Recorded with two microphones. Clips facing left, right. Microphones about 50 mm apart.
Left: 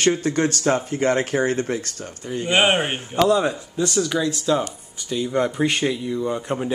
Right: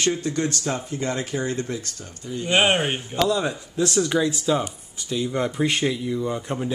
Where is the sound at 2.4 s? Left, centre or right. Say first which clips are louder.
Left 1 dB; centre.